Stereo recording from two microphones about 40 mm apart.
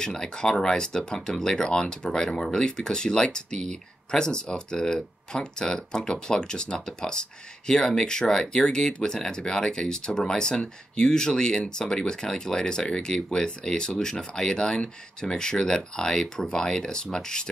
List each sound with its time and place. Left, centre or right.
0.0 s speech: centre